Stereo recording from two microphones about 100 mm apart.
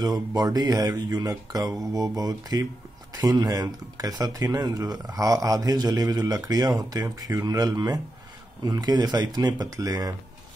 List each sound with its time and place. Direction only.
0.0 s speech: 40° right (ahead or behind)